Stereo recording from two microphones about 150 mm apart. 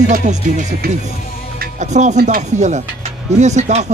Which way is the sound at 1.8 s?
50° right (ahead or behind).